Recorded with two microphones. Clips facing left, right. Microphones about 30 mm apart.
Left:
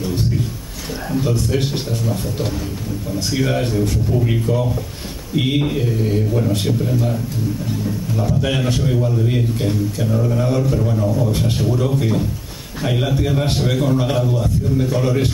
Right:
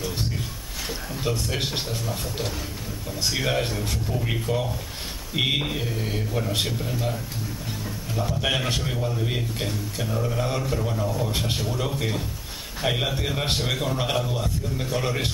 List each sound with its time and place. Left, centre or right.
1.2 s a man's voice: centre